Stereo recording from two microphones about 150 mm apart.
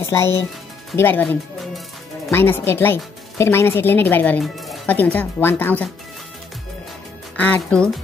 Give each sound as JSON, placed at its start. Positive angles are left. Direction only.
{"t": 0.0, "sound": "speech", "side_deg": 20}
{"t": 7.3, "sound": "speech", "side_deg": 10}